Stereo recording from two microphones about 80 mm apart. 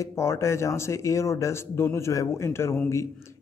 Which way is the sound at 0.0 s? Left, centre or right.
Left.